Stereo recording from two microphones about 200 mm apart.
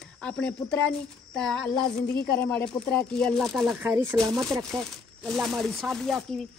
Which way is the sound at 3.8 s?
15° right (ahead or behind).